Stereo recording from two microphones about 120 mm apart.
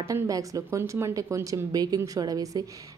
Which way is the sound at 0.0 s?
30° right (ahead or behind).